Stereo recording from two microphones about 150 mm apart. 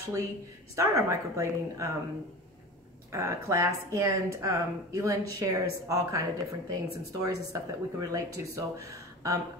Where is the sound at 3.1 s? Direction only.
20° right (ahead or behind).